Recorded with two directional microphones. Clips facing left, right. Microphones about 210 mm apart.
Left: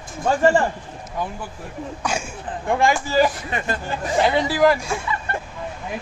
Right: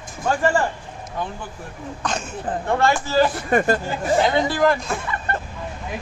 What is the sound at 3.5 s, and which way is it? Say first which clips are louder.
Speech: right 8 dB; 45° right (ahead or behind).